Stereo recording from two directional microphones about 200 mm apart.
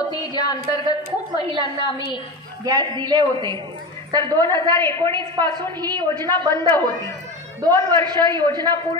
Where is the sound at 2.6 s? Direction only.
20° right (ahead or behind).